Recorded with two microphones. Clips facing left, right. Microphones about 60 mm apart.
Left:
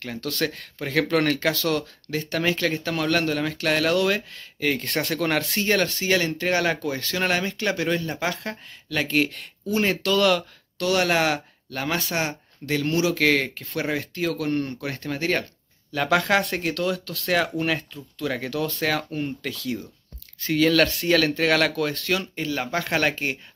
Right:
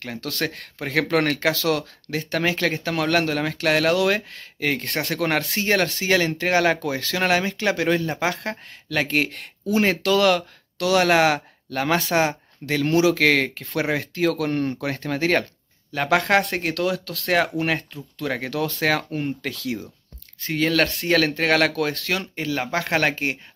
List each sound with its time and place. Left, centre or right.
0.0 s speech: right
0.3 s speech: right
2.1 s speech: right
6.4 s speech: right
14.8 s speech: right
15.9 s speech: right
17.3 s speech: right
20.4 s speech: right